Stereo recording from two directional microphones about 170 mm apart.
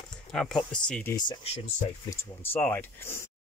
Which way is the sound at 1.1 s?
25° left (ahead or behind).